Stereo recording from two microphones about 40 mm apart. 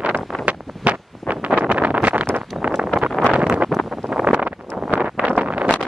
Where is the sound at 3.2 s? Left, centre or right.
Centre.